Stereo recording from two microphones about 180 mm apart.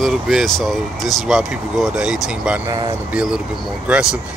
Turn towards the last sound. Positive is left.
turn(degrees=-5)  # may be behind; listen again after turning